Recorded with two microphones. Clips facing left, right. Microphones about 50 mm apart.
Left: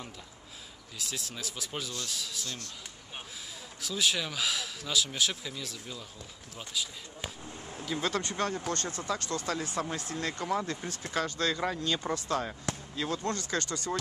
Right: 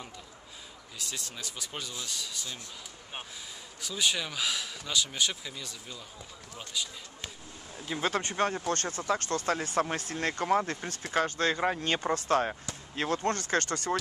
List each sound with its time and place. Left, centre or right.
0.9 s speech: centre
3.8 s speech: centre
7.8 s speech: right